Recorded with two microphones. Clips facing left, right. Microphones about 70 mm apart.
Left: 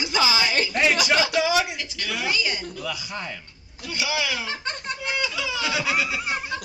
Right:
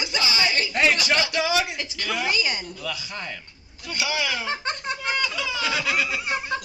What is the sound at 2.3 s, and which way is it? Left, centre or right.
Speech, right.